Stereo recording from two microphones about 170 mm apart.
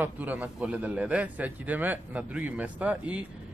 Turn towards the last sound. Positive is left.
turn(degrees=-10)  # may be behind; listen again after turning